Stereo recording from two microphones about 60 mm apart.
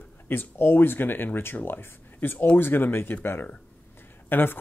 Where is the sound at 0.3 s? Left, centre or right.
Left.